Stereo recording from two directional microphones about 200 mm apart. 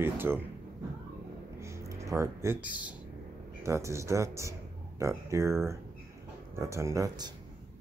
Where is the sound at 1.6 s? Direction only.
15° right (ahead or behind).